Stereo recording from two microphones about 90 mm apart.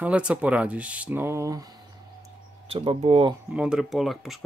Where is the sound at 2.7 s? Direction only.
90° right.